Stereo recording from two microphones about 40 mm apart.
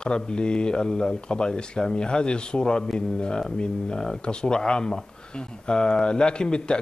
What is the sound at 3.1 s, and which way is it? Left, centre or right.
Speech, left.